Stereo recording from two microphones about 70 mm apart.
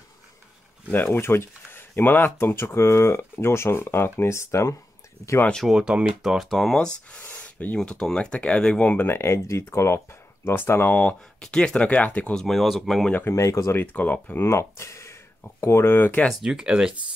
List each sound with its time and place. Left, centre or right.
0.9 s speech: left
5.7 s speech: centre
7.3 s a sound: centre
7.8 s speech: centre; by 11.0 s left
11.0 s speech: centre
12.4 s speech: centre
13.3 s speech: left
13.7 s speech: left
14.4 s speech: left
16.3 s speech: centre